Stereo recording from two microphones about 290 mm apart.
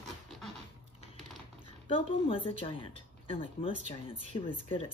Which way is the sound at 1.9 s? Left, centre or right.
Centre.